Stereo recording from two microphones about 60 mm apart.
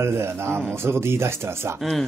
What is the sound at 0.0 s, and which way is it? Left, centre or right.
A man's voice, right.